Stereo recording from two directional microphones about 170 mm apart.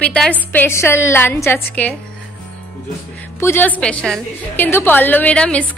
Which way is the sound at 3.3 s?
15° left (ahead or behind).